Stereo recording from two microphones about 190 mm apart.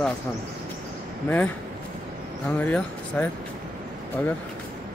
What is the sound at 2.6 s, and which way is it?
Speech, 10° left (ahead or behind).